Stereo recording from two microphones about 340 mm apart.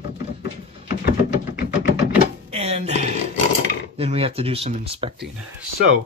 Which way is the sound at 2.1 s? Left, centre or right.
Centre.